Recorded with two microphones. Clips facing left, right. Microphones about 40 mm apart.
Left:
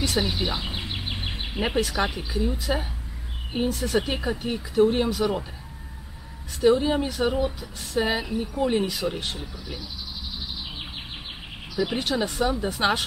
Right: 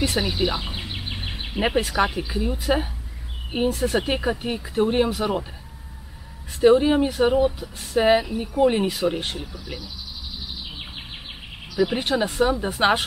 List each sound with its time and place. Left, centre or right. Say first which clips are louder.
0.1 s a sound: right 2 dB; centre
2.0 s speech: right 3 dB; centre
6.6 s speech: right 4 dB; right
11.7 s speech: right 4 dB; centre
12.0 s speech: right 3 dB; right